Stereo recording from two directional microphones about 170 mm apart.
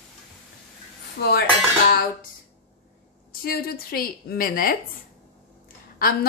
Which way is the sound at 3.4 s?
60° left (ahead or behind).